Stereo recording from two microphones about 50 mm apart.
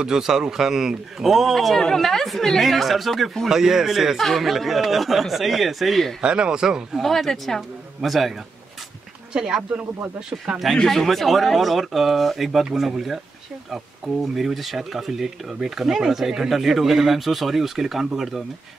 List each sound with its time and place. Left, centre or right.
0.0 s a man's voice: centre
6.2 s a man's voice: centre
7.0 s a man's voice: centre
10.8 s a man's voice: centre